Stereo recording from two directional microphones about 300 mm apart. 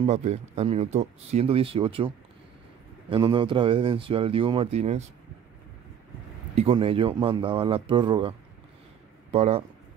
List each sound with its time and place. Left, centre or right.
0.0 s speech: right
6.5 s speech: centre